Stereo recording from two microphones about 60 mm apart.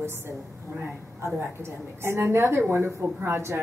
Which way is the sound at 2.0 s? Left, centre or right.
Right.